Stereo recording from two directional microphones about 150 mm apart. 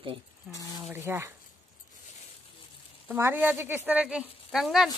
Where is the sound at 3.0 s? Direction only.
15° right (ahead or behind).